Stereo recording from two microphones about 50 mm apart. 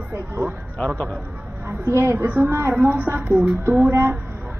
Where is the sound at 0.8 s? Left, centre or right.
Left.